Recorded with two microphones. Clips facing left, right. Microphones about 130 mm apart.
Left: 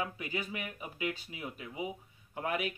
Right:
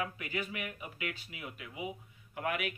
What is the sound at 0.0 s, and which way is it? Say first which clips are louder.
Speech: even; 25° left (ahead or behind).